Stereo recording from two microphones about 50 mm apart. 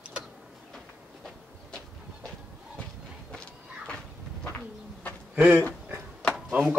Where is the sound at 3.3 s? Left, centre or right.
Centre.